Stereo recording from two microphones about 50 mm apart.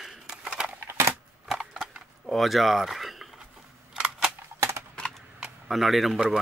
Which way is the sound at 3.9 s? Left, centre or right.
Centre.